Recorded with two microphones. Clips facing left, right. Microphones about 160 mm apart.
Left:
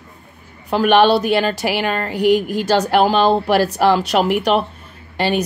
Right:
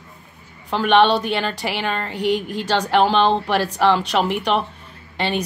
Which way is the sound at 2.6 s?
40° left (ahead or behind).